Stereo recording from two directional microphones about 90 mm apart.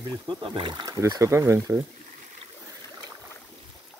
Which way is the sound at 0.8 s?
45° right (ahead or behind).